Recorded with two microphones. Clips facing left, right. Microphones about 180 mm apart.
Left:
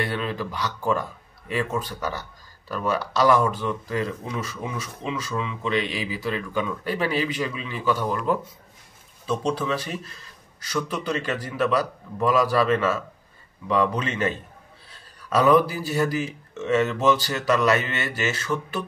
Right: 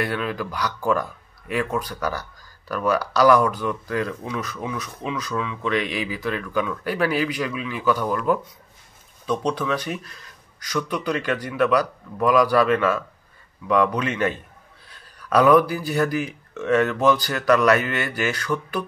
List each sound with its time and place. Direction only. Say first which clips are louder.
0.0 s speech: right 2 dB; 30° left (ahead or behind)